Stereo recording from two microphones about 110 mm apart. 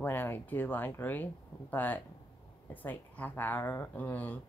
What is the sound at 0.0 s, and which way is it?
Speech, 20° left (ahead or behind).